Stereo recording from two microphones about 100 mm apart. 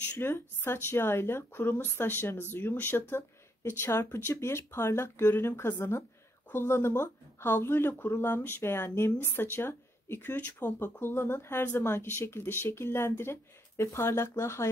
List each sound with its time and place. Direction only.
0.2 s speech: 25° left (ahead or behind)